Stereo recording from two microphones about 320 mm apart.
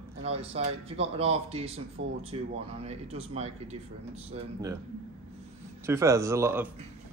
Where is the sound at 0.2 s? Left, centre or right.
Centre.